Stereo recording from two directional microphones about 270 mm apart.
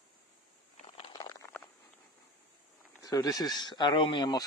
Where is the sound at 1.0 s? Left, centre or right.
Centre.